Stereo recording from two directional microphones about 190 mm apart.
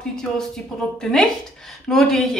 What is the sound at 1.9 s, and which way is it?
Speech, centre (ahead or behind).